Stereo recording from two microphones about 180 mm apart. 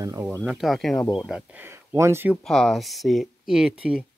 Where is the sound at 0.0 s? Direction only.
20° right (ahead or behind).